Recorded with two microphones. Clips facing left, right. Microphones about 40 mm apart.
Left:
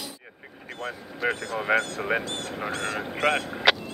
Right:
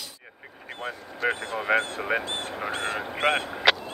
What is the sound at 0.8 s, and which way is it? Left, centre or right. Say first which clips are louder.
Speech: right 1 dB; centre.